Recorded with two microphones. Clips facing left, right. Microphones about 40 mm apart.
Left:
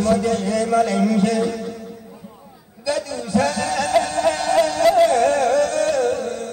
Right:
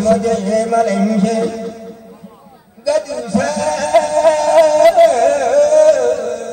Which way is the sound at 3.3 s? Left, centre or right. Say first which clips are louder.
Right 3 dB; left.